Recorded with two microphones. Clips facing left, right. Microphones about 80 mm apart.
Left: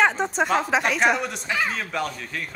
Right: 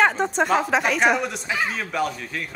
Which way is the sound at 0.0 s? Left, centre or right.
Centre.